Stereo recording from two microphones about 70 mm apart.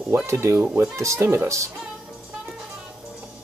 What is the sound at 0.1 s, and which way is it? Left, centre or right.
Speech, right.